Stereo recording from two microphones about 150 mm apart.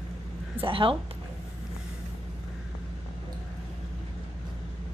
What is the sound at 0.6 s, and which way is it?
Speech, 35° right (ahead or behind).